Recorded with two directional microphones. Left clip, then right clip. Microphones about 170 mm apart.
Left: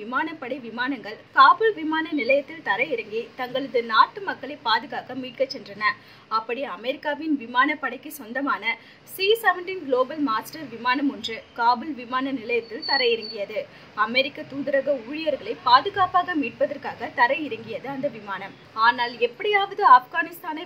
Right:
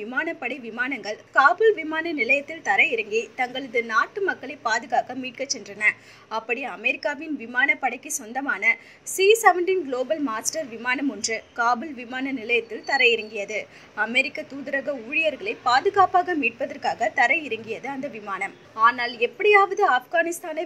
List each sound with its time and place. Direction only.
0.1 s a woman's voice: 15° right (ahead or behind)